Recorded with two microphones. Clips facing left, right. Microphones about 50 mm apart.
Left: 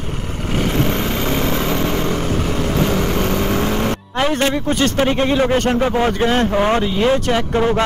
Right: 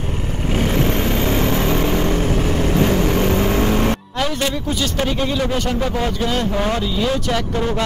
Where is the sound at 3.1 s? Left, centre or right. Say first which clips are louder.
Right 1 dB; right.